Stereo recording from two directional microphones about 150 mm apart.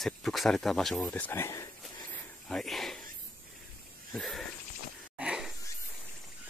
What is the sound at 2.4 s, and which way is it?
Speech, centre (ahead or behind).